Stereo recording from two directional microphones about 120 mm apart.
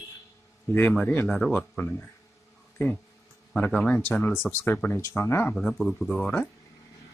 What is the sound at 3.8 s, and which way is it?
Speech, 10° left (ahead or behind).